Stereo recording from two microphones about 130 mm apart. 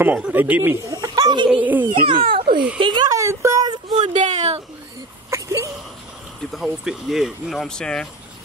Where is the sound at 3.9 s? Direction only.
70° right (ahead or behind).